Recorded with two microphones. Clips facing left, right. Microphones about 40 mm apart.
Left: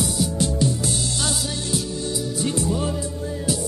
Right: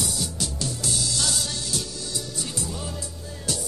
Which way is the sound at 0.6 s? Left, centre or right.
Centre.